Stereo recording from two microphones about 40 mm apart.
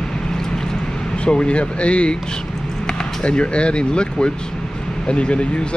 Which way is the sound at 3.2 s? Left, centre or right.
Left.